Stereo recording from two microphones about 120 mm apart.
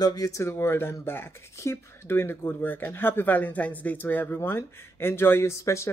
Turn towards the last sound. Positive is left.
turn(degrees=25)  # may be behind; listen again after turning